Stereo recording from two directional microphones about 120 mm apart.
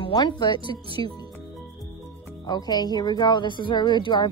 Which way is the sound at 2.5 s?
35° left (ahead or behind).